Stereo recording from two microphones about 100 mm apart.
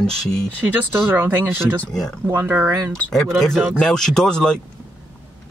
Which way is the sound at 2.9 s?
5° left (ahead or behind).